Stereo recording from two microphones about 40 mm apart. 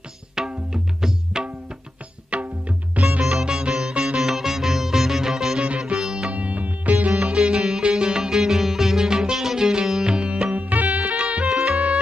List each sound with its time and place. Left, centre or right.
0.5 s music: centre
2.4 s music: right
3.3 s music: centre
4.2 s music: centre
5.9 s sitar: centre
6.3 s music: right
7.2 s music: right
10.5 s music: right
11.1 s music: right